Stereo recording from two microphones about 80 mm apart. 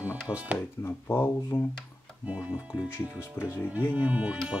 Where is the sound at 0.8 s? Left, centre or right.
Left.